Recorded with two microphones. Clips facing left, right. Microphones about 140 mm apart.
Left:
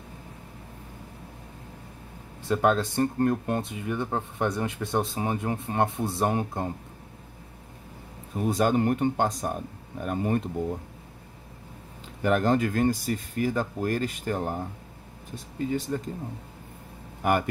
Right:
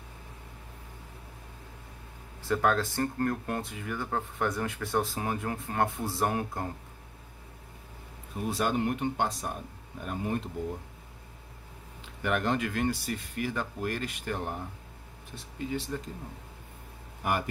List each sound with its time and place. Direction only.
2.4 s speech: 20° left (ahead or behind)
8.5 s speech: 45° left (ahead or behind)
12.2 s speech: 35° left (ahead or behind)